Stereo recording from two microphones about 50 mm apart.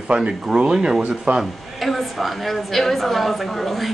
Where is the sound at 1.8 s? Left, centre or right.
Centre.